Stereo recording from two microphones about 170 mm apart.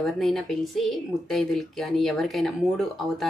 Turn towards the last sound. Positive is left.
turn(degrees=0)  # may be behind; listen again after turning